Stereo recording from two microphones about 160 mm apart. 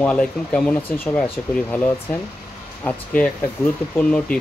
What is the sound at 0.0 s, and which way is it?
Speech, 5° left (ahead or behind).